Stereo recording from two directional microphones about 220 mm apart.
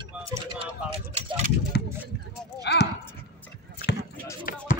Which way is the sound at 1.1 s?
30° right (ahead or behind).